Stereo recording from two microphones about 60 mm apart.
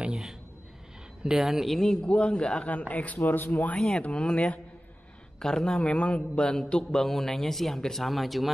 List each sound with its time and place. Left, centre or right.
0.0 s a sound: centre
1.2 s speech: centre
1.8 s a man's voice: centre; by 3.7 s left
4.0 s a man's voice: centre